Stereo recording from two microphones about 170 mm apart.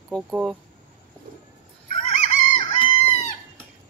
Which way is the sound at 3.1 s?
40° left (ahead or behind).